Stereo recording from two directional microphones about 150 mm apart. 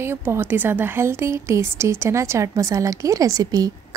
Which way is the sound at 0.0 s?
15° right (ahead or behind).